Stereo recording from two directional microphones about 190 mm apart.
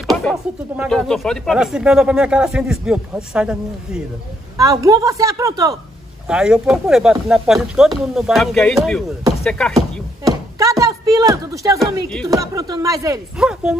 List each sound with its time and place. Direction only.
0.0 s speech: centre (ahead or behind)
4.6 s a woman's voice: 15° right (ahead or behind)
6.2 s speech: 5° right (ahead or behind)
10.2 s a woman's voice: 15° right (ahead or behind)
13.4 s speech: 5° right (ahead or behind)